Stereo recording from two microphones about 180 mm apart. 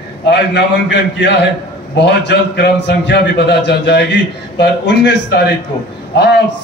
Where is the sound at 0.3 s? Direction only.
70° left (ahead or behind).